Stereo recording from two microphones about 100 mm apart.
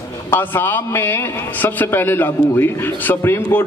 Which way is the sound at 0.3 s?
20° left (ahead or behind).